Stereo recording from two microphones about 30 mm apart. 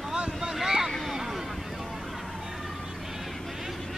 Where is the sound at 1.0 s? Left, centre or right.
Centre.